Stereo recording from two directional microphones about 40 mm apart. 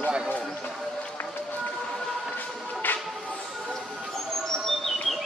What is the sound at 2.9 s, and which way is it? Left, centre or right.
Music, left.